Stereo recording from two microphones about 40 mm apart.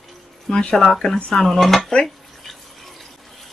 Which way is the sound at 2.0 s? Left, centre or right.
Centre.